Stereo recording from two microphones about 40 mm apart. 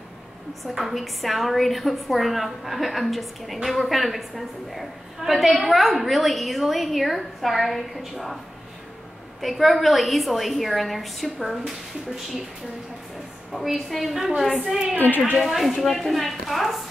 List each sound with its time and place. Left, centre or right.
0.7 s a woman's voice: centre
9.4 s a woman's voice: centre
11.2 s speech: centre
13.5 s a woman's voice: centre
15.0 s a woman's voice: left
15.4 s a woman's voice: centre